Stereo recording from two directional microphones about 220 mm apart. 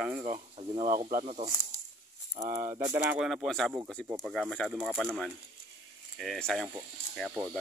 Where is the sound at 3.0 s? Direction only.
5° right (ahead or behind).